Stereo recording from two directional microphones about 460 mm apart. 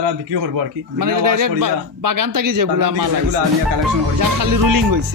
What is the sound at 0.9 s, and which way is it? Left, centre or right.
A man's voice, right.